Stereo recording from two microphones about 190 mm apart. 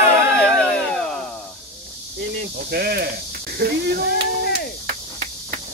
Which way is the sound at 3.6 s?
55° right (ahead or behind).